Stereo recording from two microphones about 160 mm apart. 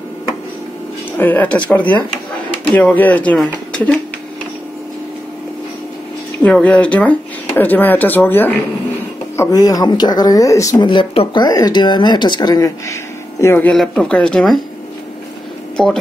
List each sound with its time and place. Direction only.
1.1 s speech: 10° left (ahead or behind)
6.4 s speech: 5° left (ahead or behind)